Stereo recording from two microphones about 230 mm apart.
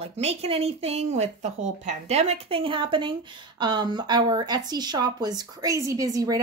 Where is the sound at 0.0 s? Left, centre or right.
Right.